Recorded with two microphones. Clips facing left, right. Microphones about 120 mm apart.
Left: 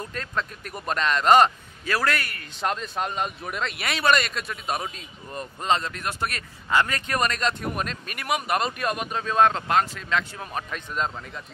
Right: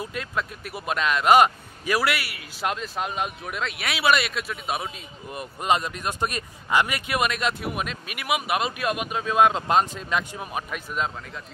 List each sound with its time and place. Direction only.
0.0 s speech: 10° right (ahead or behind)